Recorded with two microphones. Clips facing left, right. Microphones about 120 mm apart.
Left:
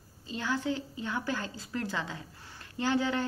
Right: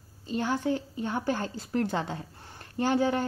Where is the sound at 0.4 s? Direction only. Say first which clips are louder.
Right 4 dB; 50° right (ahead or behind).